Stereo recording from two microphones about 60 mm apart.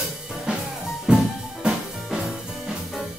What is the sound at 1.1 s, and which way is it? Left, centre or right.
Music, centre.